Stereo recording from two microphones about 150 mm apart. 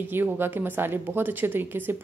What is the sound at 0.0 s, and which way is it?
A woman's voice, 15° right (ahead or behind).